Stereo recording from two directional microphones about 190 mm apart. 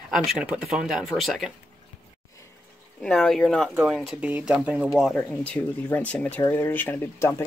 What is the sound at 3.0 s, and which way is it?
Speech, 5° left (ahead or behind).